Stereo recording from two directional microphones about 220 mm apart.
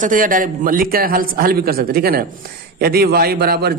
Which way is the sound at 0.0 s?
40° right (ahead or behind).